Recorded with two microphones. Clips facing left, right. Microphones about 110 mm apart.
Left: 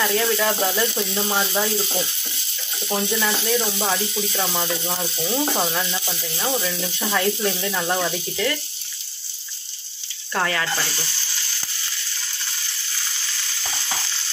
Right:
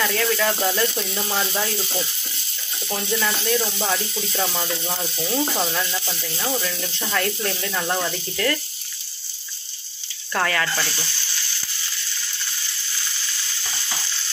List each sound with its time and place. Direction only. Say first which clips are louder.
0.0 s speech: left 1 dB; 10° left (ahead or behind)
6.6 s speech: left 2 dB; 5° left (ahead or behind)
10.3 s speech: right 1 dB; 15° left (ahead or behind)